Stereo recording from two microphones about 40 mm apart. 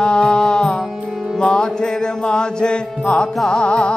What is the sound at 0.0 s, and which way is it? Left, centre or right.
Music, left.